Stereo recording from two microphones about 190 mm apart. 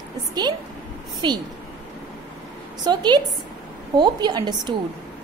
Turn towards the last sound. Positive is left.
turn(degrees=-20)  # may be behind; listen again after turning